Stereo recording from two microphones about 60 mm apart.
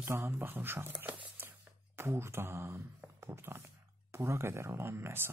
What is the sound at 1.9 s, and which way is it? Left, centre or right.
Speech, right.